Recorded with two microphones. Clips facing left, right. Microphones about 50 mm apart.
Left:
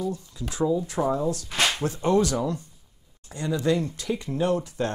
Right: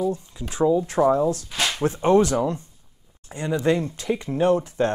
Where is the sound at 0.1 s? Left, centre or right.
Right.